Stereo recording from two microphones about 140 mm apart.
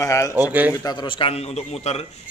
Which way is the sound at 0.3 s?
15° right (ahead or behind).